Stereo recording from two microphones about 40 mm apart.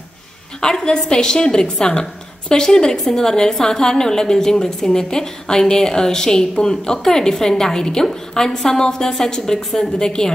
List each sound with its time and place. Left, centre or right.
0.6 s a woman's voice: centre